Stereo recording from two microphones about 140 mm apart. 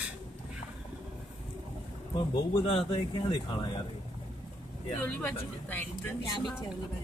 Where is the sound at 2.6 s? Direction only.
45° left (ahead or behind).